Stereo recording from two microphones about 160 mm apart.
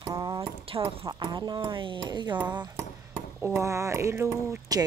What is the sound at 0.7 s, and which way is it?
Speech, 35° right (ahead or behind).